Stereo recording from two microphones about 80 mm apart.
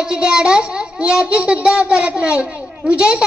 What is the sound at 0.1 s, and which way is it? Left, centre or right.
A child's voice, centre.